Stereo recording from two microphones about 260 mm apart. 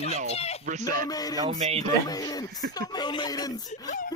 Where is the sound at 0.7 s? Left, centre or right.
Right.